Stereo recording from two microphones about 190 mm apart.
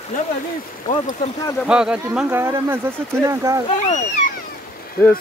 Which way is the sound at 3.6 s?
35° left (ahead or behind).